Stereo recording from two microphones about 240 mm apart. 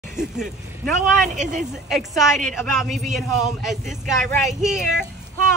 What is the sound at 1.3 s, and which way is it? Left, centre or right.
Speech, right.